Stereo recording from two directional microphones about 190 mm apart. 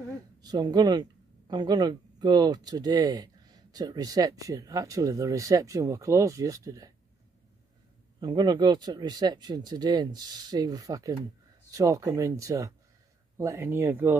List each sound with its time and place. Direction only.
0.4 s speech: 20° right (ahead or behind)
8.2 s speech: 20° right (ahead or behind)